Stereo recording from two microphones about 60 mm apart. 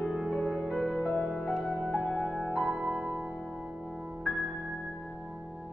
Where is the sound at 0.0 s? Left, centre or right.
Centre.